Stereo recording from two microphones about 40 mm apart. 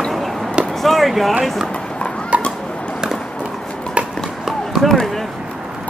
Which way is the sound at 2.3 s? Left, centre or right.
Right.